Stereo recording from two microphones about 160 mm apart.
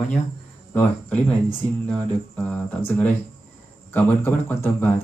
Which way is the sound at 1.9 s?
10° left (ahead or behind).